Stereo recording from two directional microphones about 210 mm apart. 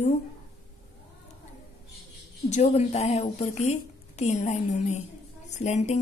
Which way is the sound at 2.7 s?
30° left (ahead or behind).